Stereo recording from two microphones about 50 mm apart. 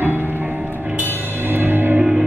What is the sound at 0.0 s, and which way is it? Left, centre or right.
Music, right.